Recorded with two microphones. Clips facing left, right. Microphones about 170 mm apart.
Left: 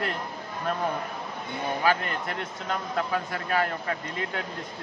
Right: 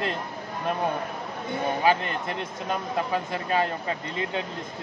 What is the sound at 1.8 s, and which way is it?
Speech, 20° right (ahead or behind).